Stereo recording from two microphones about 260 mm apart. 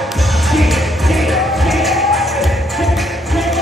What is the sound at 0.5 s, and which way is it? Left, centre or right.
Music, centre.